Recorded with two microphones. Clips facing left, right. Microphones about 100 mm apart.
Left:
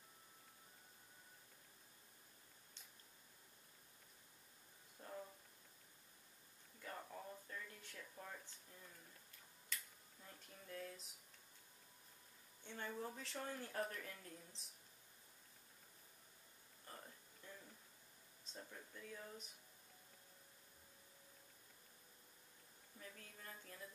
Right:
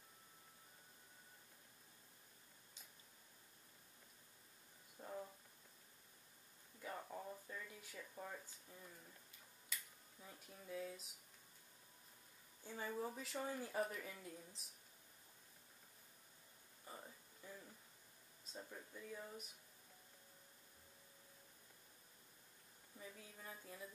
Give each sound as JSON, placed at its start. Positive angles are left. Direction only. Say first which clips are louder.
{"t": 5.0, "sound": "a sound", "louder": "right 2 dB", "side_deg": -10}
{"t": 6.8, "sound": "speech", "louder": "right 3 dB", "side_deg": -5}
{"t": 9.7, "sound": "cutlery", "louder": "left 1 dB", "side_deg": -5}
{"t": 12.6, "sound": "speech", "louder": "right 2 dB", "side_deg": -5}
{"t": 16.8, "sound": "a sound", "louder": "right 2 dB", "side_deg": -10}
{"t": 18.5, "sound": "speech", "louder": "right 2 dB", "side_deg": -10}
{"t": 22.9, "sound": "speech", "louder": "right 2 dB", "side_deg": -10}